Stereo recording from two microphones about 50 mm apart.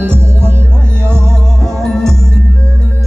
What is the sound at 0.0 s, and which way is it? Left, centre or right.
Music, right.